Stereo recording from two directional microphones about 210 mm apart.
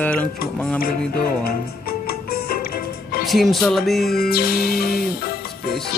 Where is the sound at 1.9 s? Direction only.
45° left (ahead or behind).